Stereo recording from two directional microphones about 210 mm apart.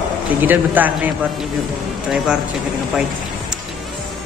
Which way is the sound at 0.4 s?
10° right (ahead or behind).